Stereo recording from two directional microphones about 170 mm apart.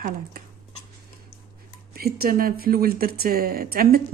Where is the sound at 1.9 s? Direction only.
60° right (ahead or behind).